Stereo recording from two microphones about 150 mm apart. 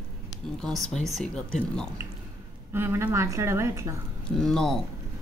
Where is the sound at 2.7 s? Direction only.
15° right (ahead or behind).